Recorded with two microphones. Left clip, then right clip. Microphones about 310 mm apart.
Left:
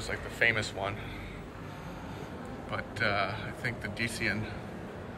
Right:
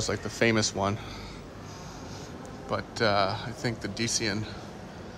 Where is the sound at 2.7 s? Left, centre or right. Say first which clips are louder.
Right 5 dB; centre.